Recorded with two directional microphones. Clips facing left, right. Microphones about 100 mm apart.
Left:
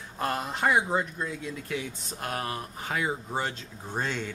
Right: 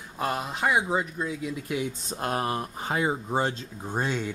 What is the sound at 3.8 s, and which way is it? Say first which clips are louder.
Speech: right 3 dB; 15° right (ahead or behind).